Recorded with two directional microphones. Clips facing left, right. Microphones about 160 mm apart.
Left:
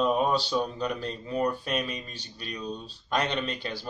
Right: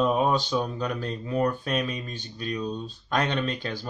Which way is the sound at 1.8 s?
40° right (ahead or behind).